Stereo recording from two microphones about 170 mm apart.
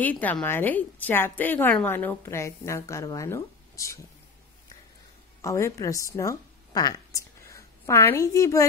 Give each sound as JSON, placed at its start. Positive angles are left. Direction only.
{"t": 0.0, "sound": "a woman's voice", "side_deg": 10}
{"t": 5.4, "sound": "a woman's voice", "side_deg": 20}